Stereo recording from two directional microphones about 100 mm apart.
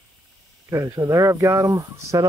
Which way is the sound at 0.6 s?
35° right (ahead or behind).